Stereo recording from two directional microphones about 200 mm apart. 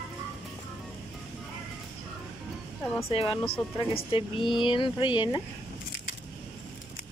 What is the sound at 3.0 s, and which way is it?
Speech, 30° left (ahead or behind).